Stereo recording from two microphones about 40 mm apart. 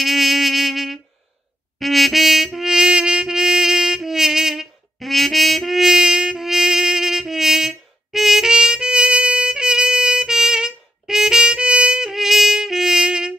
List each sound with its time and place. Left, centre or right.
0.0 s a sound: centre
1.8 s music: centre
2.9 s music: right
4.9 s music: centre
11.4 s music: right
12.0 s music: centre